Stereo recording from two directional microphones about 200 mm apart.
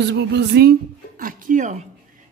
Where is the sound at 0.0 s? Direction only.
60° right (ahead or behind).